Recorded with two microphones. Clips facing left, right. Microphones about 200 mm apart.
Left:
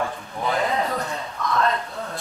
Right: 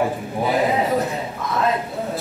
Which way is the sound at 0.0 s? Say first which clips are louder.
Right 5 dB; 15° right (ahead or behind).